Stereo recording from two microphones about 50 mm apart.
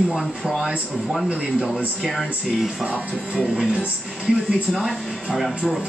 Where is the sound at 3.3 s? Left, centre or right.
Centre.